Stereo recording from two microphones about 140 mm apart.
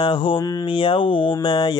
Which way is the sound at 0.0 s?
35° left (ahead or behind).